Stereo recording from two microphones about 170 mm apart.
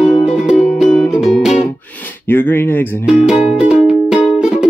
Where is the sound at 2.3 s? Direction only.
10° left (ahead or behind).